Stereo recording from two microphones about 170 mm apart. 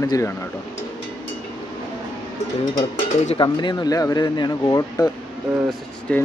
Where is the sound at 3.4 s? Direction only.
25° left (ahead or behind).